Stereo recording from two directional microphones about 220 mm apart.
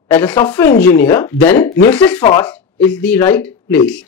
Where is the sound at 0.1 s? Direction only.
10° left (ahead or behind).